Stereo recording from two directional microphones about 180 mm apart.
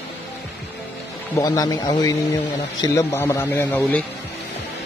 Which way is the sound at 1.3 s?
20° left (ahead or behind).